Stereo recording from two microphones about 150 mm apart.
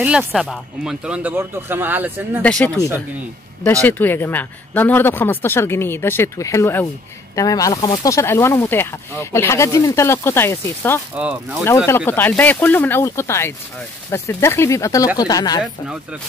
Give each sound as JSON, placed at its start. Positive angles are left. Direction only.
{"t": 0.0, "sound": "speech", "side_deg": -5}
{"t": 2.4, "sound": "speech", "side_deg": 10}
{"t": 3.8, "sound": "speech", "side_deg": 15}
{"t": 11.1, "sound": "speech", "side_deg": -10}
{"t": 11.6, "sound": "speech", "side_deg": 15}
{"t": 15.6, "sound": "speech", "side_deg": -5}